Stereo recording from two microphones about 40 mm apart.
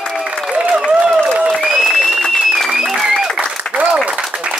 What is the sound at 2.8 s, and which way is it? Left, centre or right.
Applause, centre.